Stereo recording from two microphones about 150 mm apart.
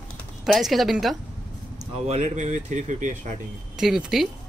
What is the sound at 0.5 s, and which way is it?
Speech, centre (ahead or behind).